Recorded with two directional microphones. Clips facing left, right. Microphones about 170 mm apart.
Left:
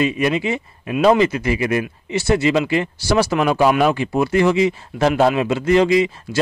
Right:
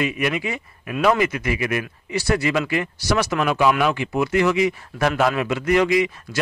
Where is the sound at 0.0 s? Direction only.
30° left (ahead or behind).